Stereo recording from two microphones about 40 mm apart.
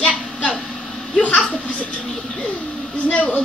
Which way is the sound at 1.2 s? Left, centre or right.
Left.